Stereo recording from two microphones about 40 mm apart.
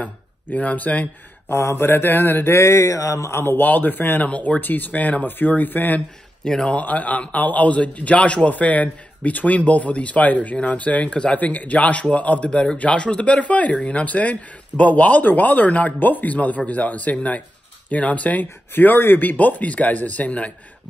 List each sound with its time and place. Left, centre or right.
0.0 s speech: left
1.5 s a man's voice: left
3.6 s speech: left
4.3 s a man's voice: left
4.6 s speech: left
6.4 s speech: centre
6.7 s a man's voice: left
11.3 s a man's voice: left
12.4 s a man's voice: left